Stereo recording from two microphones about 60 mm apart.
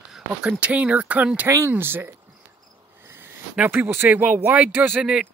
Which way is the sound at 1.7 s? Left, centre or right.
Right.